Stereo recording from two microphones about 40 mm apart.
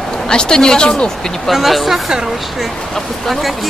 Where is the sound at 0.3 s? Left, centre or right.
Centre.